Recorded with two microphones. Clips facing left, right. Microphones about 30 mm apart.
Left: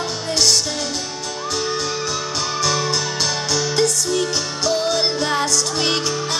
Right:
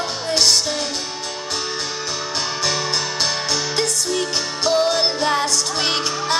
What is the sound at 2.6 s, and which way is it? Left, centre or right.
Music, centre.